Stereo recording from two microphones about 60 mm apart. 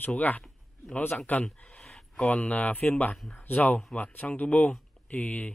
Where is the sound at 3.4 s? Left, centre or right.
Left.